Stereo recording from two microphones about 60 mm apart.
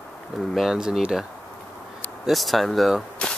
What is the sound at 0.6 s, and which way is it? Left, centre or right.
Speech, centre.